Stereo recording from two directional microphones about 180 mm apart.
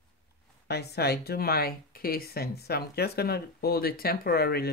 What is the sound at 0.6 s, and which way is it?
Speech, 65° left (ahead or behind).